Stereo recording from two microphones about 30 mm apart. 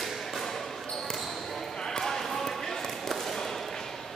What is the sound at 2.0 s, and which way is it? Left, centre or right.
Basketball bounce, centre.